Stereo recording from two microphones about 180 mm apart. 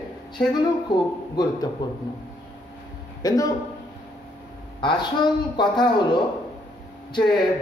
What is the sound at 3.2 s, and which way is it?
Speech, 20° left (ahead or behind).